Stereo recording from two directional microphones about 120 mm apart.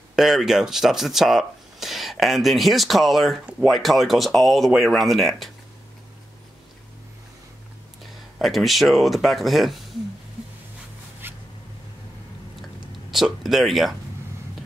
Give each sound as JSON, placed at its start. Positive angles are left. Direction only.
{"t": 0.1, "sound": "speech", "side_deg": 0}
{"t": 8.0, "sound": "speech", "side_deg": 0}
{"t": 11.2, "sound": "zipper", "side_deg": -15}
{"t": 13.1, "sound": "speech", "side_deg": 0}